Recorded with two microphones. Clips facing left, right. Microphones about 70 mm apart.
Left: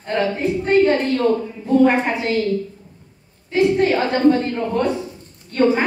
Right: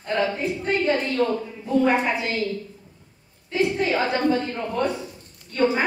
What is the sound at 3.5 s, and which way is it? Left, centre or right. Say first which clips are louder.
A man's voice: left 6 dB; left.